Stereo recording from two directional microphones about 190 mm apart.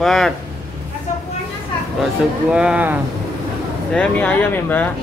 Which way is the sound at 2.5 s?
5° right (ahead or behind).